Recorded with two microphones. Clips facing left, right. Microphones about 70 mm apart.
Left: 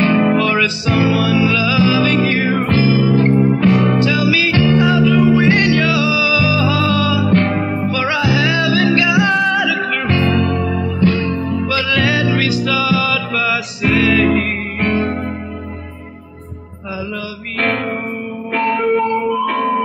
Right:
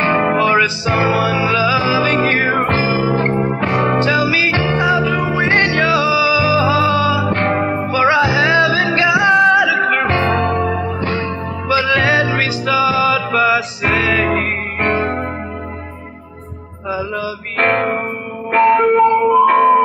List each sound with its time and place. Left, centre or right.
0.0 s music: right
17.6 s music: right